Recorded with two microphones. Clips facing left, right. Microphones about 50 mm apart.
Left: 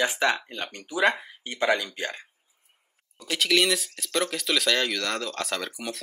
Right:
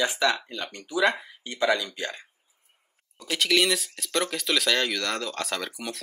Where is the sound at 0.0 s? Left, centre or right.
Left.